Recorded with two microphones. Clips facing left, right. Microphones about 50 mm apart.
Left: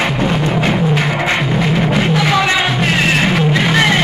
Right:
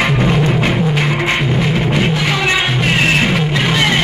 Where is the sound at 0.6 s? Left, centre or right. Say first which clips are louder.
Left 1 dB; centre.